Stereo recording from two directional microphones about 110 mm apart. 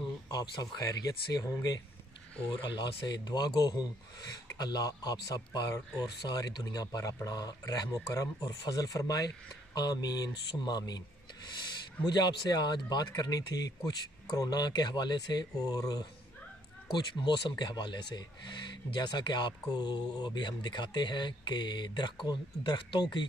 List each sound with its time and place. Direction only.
0.3 s speech: 35° left (ahead or behind)
12.1 s speech: 40° left (ahead or behind)